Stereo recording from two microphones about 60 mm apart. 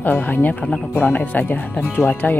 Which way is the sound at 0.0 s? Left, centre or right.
Left.